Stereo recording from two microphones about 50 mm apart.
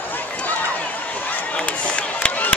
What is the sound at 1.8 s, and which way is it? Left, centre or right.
Run, left.